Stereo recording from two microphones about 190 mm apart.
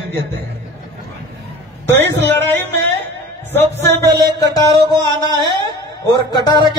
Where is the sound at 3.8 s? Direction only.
60° right (ahead or behind).